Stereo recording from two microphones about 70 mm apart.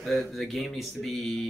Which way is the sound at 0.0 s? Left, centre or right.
Centre.